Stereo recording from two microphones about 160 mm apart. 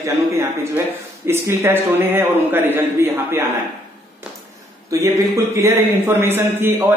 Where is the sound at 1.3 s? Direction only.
15° right (ahead or behind).